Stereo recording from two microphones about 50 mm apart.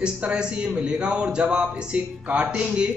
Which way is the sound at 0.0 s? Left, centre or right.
Centre.